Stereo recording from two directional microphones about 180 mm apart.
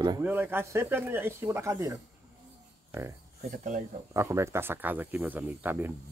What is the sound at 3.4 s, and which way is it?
Speech, 45° right (ahead or behind).